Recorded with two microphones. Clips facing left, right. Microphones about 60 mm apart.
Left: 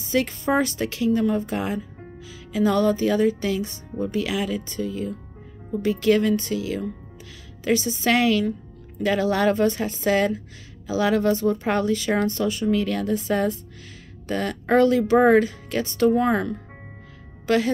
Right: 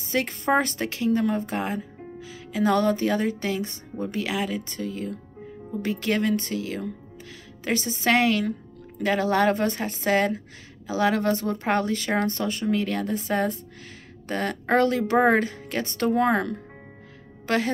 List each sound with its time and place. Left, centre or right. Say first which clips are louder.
0.0 s a woman's voice: left 3 dB; right
14.3 s a woman's voice: left 1 dB; right
14.7 s speech: left 4 dB; right